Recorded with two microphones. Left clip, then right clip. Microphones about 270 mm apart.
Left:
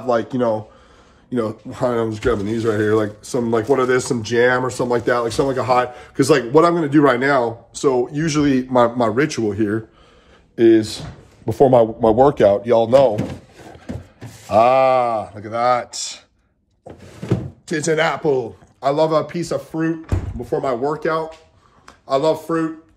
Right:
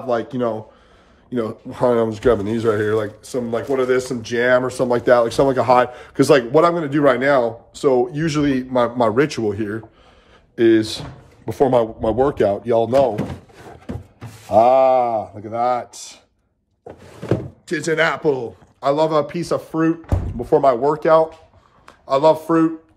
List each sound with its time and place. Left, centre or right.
0.0 s speech: centre; by 13.1 s left
14.5 s speech: left
17.6 s a man's voice: centre